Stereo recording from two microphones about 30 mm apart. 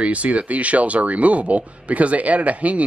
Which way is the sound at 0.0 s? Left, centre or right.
Right.